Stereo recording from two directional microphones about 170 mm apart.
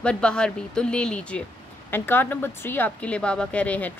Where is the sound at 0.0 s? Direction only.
5° left (ahead or behind).